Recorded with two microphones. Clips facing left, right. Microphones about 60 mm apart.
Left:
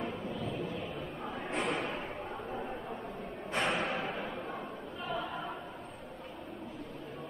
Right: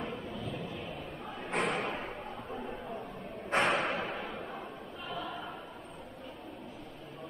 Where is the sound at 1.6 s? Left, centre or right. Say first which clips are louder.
Right 2 dB; centre.